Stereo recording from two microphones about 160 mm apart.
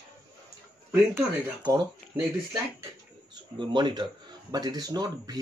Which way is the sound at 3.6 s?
30° right (ahead or behind).